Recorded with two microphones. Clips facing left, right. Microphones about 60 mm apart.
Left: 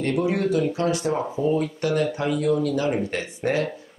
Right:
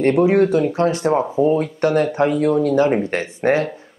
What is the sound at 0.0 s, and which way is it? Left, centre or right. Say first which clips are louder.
Speech: right 9 dB; right.